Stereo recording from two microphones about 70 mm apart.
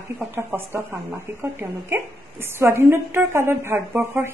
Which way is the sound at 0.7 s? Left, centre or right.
Right.